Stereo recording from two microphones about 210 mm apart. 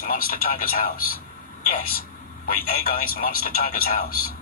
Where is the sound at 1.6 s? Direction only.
45° left (ahead or behind).